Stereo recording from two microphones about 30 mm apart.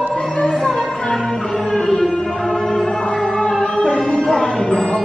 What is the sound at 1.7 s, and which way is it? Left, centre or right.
Music, centre.